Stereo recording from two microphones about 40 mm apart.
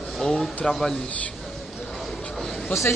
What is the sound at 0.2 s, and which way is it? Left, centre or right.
Speech, centre.